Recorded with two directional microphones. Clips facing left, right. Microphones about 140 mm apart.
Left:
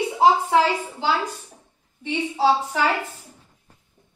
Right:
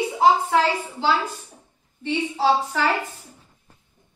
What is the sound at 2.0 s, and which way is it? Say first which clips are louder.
Speech: even; 10° left (ahead or behind).